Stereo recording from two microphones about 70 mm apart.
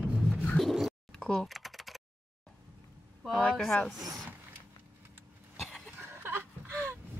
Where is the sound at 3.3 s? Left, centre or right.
Centre.